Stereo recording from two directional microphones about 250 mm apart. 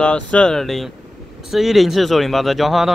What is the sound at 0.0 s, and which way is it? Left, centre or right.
Speech, centre.